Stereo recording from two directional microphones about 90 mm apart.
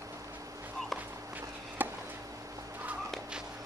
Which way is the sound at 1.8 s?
20° right (ahead or behind).